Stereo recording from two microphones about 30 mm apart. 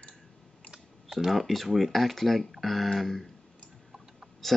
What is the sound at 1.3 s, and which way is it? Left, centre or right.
Speech, centre.